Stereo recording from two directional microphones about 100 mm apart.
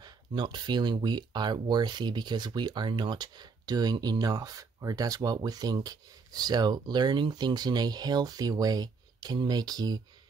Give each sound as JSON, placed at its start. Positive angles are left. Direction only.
{"t": 0.0, "sound": "speech", "side_deg": -45}